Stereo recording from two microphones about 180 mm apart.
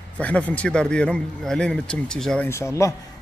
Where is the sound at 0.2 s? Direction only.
10° left (ahead or behind).